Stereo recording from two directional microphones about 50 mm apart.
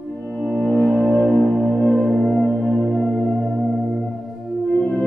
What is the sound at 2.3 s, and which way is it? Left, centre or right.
Music, left.